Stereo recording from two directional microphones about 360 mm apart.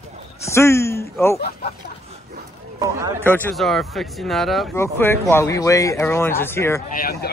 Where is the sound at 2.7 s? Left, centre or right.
Centre.